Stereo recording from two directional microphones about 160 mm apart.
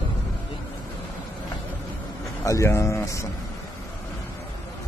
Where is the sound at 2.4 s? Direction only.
20° left (ahead or behind).